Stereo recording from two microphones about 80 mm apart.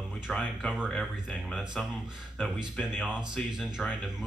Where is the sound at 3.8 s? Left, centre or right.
Centre.